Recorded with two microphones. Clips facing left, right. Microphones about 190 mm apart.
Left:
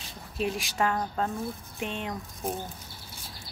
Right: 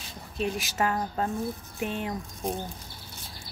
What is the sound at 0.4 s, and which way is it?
Speech, centre (ahead or behind).